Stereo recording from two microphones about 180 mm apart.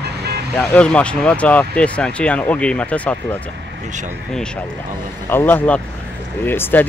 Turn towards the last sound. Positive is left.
turn(degrees=10)  # may be behind; listen again after turning